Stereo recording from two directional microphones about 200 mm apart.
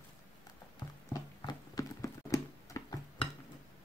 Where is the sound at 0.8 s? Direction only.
20° left (ahead or behind).